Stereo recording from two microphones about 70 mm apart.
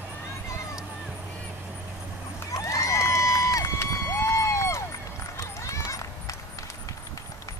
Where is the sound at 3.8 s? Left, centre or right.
Left.